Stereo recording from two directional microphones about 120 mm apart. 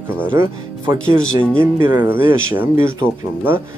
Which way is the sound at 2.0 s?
20° right (ahead or behind).